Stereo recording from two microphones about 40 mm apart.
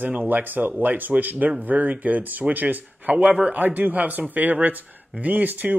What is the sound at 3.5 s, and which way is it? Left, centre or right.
Speech, right.